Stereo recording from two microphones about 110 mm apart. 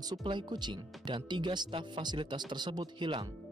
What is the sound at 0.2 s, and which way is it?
Speech, 45° right (ahead or behind).